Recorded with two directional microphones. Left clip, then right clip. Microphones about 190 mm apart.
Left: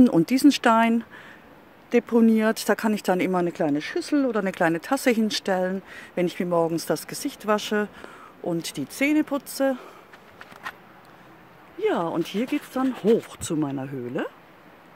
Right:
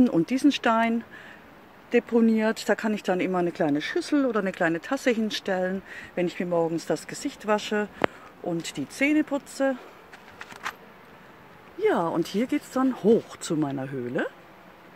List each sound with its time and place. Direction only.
0.0 s speech: 30° left (ahead or behind)
3.4 s speech: 15° left (ahead or behind)
4.5 s speech: 25° left (ahead or behind)
11.8 s speech: centre (ahead or behind)
13.4 s speech: 10° left (ahead or behind)